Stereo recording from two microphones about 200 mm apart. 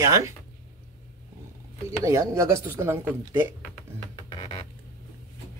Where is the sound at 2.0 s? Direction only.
15° right (ahead or behind).